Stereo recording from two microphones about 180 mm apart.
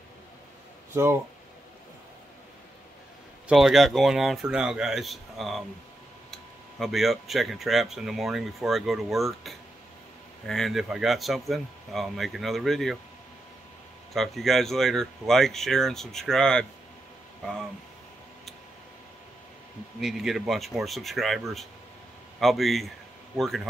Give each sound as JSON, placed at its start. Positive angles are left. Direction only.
{"t": 3.4, "sound": "speech", "side_deg": 0}
{"t": 14.1, "sound": "speech", "side_deg": 0}
{"t": 20.0, "sound": "a man's voice", "side_deg": 0}